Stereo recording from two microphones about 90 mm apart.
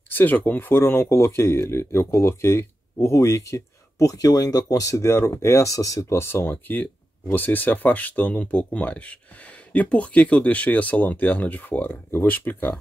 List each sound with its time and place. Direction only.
0.1 s speech: 20° left (ahead or behind)